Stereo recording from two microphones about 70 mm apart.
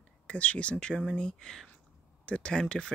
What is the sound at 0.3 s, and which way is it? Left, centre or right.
Speech, centre.